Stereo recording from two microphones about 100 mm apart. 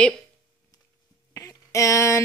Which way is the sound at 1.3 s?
30° left (ahead or behind).